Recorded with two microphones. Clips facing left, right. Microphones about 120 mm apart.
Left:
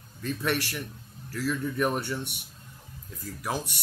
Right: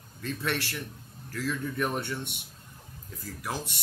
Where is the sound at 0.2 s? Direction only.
15° left (ahead or behind).